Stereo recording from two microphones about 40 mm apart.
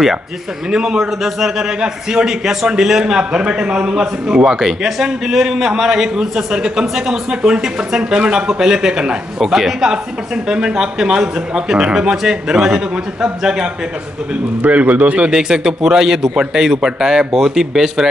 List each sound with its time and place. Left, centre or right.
0.7 s a man's voice: right
14.6 s a man's voice: right
15.3 s a man's voice: centre